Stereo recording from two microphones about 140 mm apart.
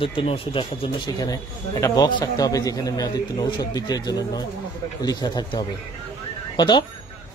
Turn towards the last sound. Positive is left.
turn(degrees=35)  # may be behind; listen again after turning